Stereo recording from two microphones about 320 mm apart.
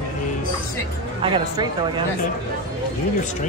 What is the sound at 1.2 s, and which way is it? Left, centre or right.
Speech, centre.